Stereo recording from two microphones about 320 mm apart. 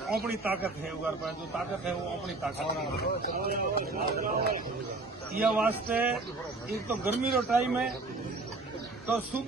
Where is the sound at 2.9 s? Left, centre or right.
Left.